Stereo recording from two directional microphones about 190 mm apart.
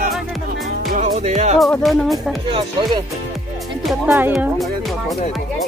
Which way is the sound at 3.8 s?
10° right (ahead or behind).